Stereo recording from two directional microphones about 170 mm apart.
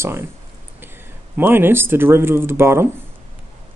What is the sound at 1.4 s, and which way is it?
Speech, 10° right (ahead or behind).